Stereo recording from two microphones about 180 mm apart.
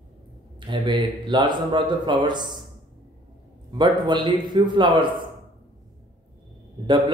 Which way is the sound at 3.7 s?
25° right (ahead or behind).